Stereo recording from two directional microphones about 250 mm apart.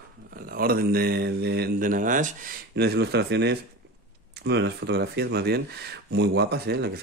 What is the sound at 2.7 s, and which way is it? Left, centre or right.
A man's voice, right.